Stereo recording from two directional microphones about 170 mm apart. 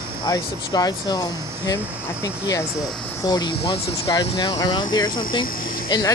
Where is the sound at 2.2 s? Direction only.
20° left (ahead or behind).